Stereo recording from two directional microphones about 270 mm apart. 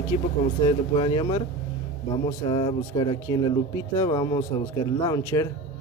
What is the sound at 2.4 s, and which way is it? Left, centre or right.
Speech, centre.